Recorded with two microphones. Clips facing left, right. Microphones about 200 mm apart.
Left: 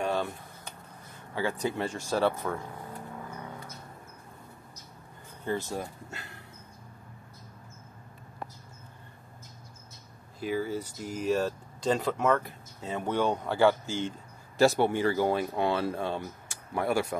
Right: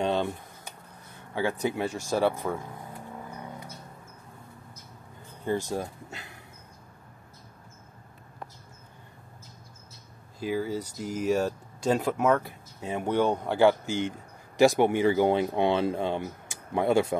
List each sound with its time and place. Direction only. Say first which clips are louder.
0.0 s a sound: right 3 dB; 20° right (ahead or behind)
1.3 s speech: right 2 dB; 15° right (ahead or behind)
5.4 s speech: right 3 dB; 15° right (ahead or behind)
10.4 s speech: right 1 dB; 10° right (ahead or behind)